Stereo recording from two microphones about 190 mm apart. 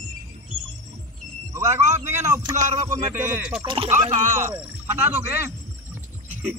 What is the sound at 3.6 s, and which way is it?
Speech, 30° right (ahead or behind).